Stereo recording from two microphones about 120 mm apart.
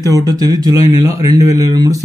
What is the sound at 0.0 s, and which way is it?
Speech, 30° right (ahead or behind).